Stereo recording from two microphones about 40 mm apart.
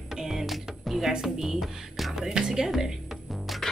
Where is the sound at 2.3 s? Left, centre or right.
Centre.